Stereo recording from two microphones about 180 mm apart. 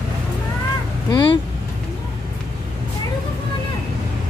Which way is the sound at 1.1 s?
25° left (ahead or behind).